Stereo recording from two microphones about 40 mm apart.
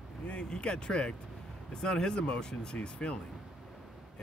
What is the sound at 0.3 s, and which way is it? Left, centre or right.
Speech, left.